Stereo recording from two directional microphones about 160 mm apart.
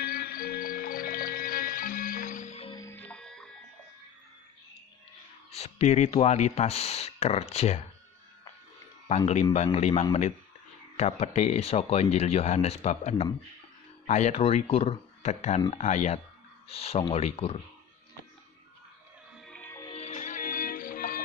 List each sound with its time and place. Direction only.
0.0 s music: 70° left (ahead or behind); by 2.7 s 45° left (ahead or behind)
2.7 s music: 15° left (ahead or behind)
5.5 s speech: 40° left (ahead or behind)
9.0 s speech: 45° left (ahead or behind)
19.4 s music: 10° left (ahead or behind)
19.9 s music: 45° left (ahead or behind); by 21.2 s 60° left (ahead or behind)